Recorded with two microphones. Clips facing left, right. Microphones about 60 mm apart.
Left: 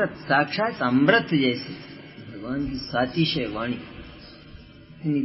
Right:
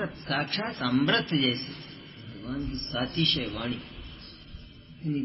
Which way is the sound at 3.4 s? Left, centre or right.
Left.